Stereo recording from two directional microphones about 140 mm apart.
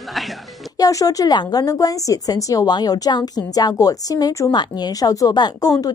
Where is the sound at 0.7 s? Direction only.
25° left (ahead or behind).